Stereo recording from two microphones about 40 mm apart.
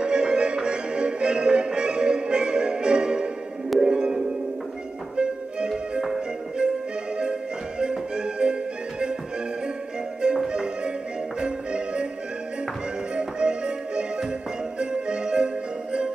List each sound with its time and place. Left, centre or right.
0.0 s music: right
5.7 s music: centre
7.8 s music: right
10.2 s music: centre
13.1 s music: right